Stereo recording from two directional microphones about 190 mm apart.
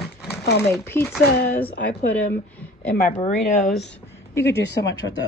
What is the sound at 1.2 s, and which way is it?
Speech, 55° left (ahead or behind).